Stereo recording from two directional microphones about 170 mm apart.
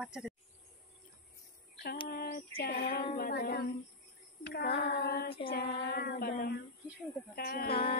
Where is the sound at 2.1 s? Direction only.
60° left (ahead or behind).